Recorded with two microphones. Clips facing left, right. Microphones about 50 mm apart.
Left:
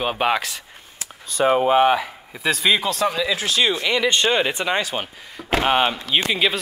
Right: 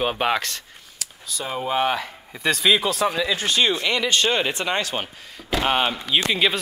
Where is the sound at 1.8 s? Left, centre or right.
Centre.